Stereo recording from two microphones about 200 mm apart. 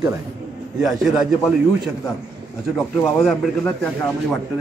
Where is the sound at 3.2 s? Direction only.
5° left (ahead or behind).